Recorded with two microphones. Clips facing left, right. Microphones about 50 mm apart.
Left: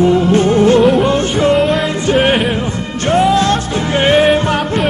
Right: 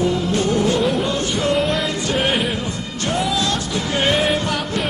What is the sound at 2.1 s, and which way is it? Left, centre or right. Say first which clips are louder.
Music: left 9 dB; left.